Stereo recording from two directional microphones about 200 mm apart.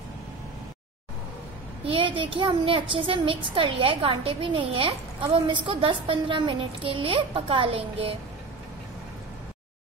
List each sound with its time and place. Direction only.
1.9 s a child's voice: 25° right (ahead or behind)